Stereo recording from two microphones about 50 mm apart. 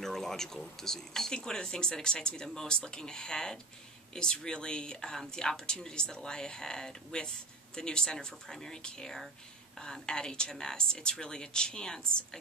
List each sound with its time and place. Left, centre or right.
0.0 s speech: centre